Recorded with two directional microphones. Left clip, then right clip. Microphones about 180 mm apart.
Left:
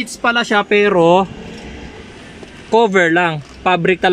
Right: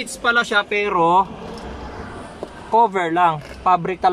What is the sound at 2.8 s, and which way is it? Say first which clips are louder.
Speech: left 4 dB; 45° left (ahead or behind).